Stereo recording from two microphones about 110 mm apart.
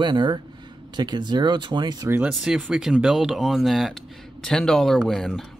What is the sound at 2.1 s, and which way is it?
Speech, 20° right (ahead or behind).